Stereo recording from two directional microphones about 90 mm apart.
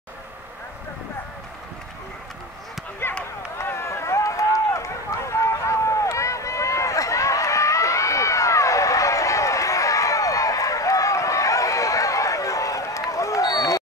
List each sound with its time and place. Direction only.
3.0 s run: 25° left (ahead or behind)